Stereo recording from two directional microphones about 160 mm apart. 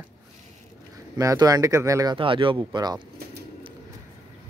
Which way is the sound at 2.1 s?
30° right (ahead or behind).